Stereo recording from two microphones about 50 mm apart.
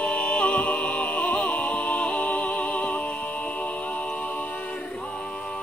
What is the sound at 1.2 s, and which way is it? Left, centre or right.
Music, centre.